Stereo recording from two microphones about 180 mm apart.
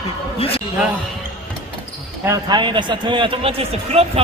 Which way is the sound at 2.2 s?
25° right (ahead or behind).